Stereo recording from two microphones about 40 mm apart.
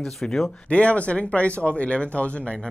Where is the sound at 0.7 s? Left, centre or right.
Left.